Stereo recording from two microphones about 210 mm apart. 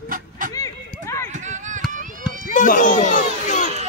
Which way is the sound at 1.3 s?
35° right (ahead or behind).